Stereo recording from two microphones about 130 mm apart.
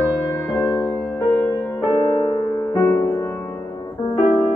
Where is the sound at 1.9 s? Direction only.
30° left (ahead or behind); by 3.5 s 15° left (ahead or behind).